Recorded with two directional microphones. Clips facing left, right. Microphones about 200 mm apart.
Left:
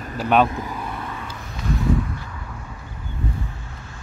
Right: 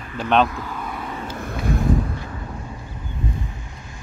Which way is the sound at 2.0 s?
35° right (ahead or behind).